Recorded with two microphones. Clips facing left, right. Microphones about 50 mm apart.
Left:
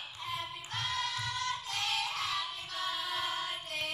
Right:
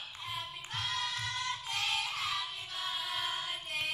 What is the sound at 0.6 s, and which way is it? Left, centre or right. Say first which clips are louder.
Music: left 1 dB; centre.